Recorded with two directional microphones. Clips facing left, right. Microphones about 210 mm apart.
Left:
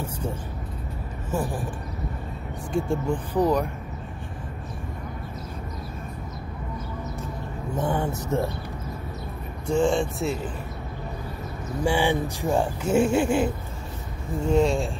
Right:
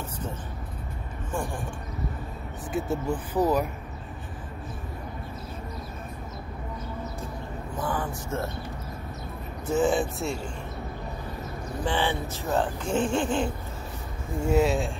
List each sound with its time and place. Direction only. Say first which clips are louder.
1.3 s speech: left 4 dB; 5° left (ahead or behind)
2.7 s speech: left 3 dB; 5° right (ahead or behind)
7.7 s speech: left 5 dB; 25° left (ahead or behind)
9.7 s speech: left 2 dB; 5° right (ahead or behind)
11.8 s speech: left 5 dB; 10° left (ahead or behind)
14.4 s speech: left 2 dB; 5° right (ahead or behind)